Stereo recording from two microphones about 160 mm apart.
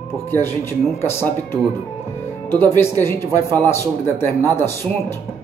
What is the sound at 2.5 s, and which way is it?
Speech, 15° left (ahead or behind).